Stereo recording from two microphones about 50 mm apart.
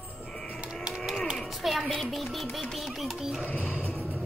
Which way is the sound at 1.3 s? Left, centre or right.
Centre.